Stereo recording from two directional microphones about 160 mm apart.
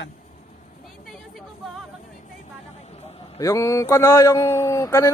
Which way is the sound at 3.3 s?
20° left (ahead or behind).